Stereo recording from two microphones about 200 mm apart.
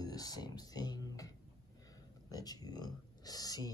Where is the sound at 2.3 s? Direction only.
20° left (ahead or behind).